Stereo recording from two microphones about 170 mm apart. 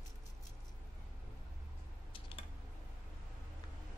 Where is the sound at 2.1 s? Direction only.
30° left (ahead or behind).